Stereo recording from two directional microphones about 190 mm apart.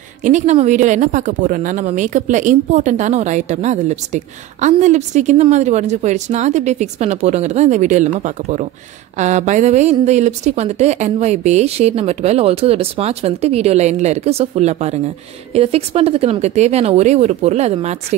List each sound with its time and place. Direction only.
0.2 s speech: 40° right (ahead or behind)